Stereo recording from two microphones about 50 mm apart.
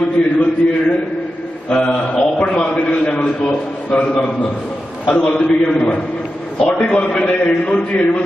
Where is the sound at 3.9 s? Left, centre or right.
Left.